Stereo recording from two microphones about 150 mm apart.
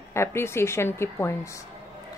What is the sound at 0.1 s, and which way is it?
Speech, 15° left (ahead or behind).